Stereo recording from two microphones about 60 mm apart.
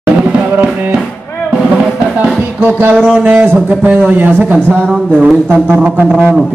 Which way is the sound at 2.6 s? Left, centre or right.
Right.